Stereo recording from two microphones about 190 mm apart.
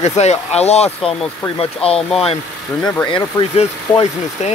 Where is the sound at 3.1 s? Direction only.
30° left (ahead or behind).